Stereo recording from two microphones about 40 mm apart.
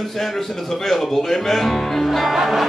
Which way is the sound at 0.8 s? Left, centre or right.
Centre.